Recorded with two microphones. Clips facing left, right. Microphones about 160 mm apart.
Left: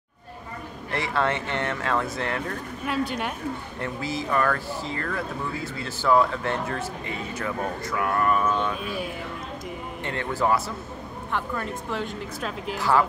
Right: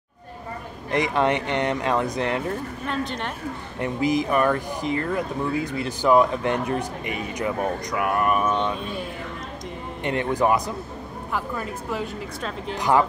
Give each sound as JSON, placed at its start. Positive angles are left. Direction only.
{"t": 0.9, "sound": "speech", "side_deg": -15}
{"t": 2.8, "sound": "speech", "side_deg": 10}
{"t": 3.8, "sound": "speech", "side_deg": -15}
{"t": 10.0, "sound": "speech", "side_deg": -20}
{"t": 11.3, "sound": "speech", "side_deg": -5}
{"t": 12.7, "sound": "speech", "side_deg": -15}